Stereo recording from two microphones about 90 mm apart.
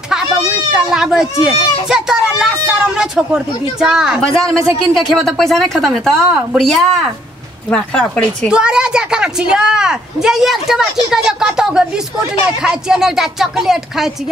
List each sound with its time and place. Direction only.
0.7 s speech: 5° right (ahead or behind)
4.4 s speech: 35° right (ahead or behind)
5.1 s a woman's voice: 5° left (ahead or behind)
7.7 s speech: 10° left (ahead or behind)
8.5 s speech: 10° right (ahead or behind)